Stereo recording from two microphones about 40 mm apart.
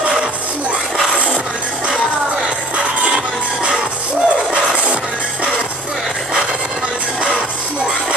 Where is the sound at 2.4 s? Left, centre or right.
Right.